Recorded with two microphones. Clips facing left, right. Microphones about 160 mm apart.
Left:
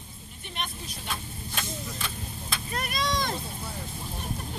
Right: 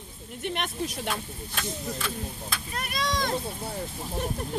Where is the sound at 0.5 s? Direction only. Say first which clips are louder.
Right 7 dB; 70° right (ahead or behind).